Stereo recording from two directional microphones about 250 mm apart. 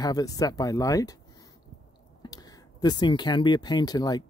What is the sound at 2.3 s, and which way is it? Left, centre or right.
Speech, centre.